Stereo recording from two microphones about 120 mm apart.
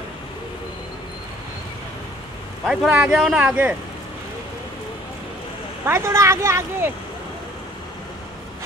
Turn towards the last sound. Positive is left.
turn(degrees=-25)  # may be behind; listen again after turning